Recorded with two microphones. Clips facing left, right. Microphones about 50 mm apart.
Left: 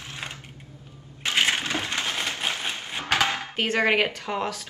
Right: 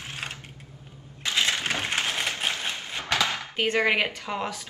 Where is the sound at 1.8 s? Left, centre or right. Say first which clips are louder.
Right 1 dB; right.